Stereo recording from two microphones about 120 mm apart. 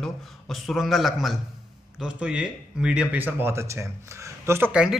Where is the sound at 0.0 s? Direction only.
Centre (ahead or behind); by 4.6 s 20° right (ahead or behind).